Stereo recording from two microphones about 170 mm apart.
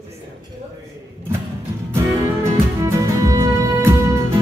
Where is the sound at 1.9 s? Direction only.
15° right (ahead or behind).